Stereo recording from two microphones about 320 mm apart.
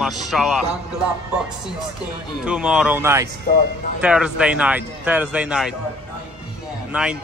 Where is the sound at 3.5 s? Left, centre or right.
Left.